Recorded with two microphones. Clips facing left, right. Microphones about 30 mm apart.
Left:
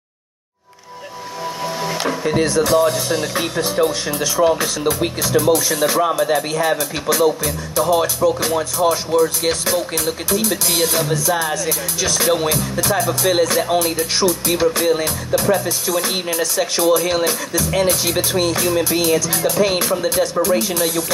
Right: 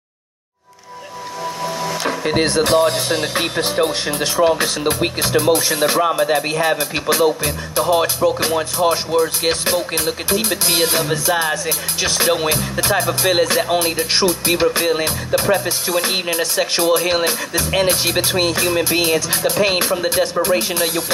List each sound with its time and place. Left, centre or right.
2.0 s speech: right